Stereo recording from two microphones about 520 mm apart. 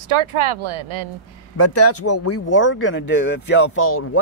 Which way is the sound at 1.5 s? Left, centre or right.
Left.